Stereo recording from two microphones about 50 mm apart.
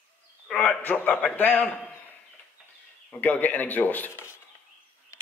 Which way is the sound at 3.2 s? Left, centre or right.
Left.